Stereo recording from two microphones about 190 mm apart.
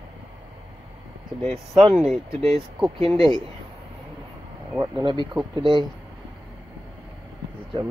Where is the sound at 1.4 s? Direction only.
30° right (ahead or behind).